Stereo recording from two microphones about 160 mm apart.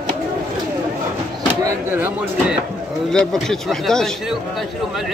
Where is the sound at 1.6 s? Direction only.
10° right (ahead or behind).